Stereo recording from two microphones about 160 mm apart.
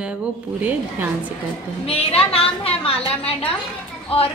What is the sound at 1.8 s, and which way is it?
A woman's voice, 35° left (ahead or behind).